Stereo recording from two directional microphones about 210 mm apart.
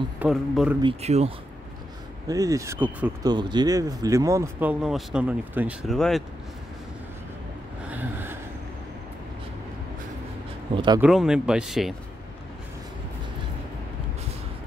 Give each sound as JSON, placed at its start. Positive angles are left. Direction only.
{"t": 0.2, "sound": "speech", "side_deg": -5}
{"t": 0.8, "sound": "speech", "side_deg": -30}
{"t": 2.2, "sound": "speech", "side_deg": -15}
{"t": 3.3, "sound": "speech", "side_deg": -20}
{"t": 7.9, "sound": "a sound", "side_deg": -10}
{"t": 11.0, "sound": "speech", "side_deg": 0}